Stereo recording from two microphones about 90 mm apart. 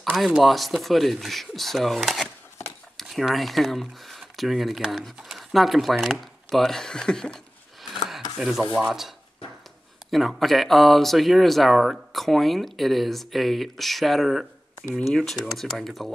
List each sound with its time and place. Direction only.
0.4 s speech: centre (ahead or behind)
8.4 s speech: 5° right (ahead or behind)
10.1 s speech: centre (ahead or behind)